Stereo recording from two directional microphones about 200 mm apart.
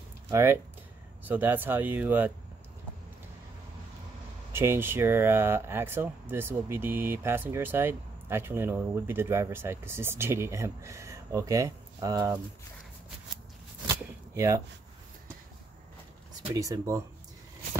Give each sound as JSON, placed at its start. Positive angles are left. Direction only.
{"t": 0.3, "sound": "speech", "side_deg": -15}
{"t": 4.5, "sound": "speech", "side_deg": -10}
{"t": 13.8, "sound": "a sound", "side_deg": -15}
{"t": 16.5, "sound": "speech", "side_deg": -15}